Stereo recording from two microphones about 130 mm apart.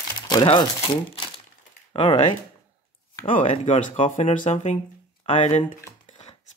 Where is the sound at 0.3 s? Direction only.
35° left (ahead or behind).